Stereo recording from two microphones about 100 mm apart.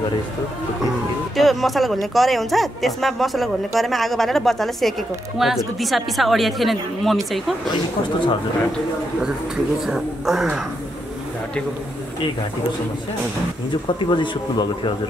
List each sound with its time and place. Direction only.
1.3 s speech: centre (ahead or behind)
9.8 s speech: 5° right (ahead or behind)
13.9 s speech: 50° left (ahead or behind)